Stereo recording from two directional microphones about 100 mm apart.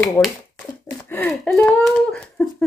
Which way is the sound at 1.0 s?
15° left (ahead or behind).